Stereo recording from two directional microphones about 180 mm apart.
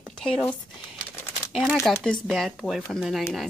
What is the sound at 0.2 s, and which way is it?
Speech, 5° left (ahead or behind).